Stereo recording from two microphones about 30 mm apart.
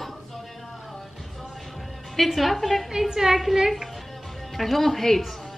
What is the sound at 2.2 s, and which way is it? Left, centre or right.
Speech, centre.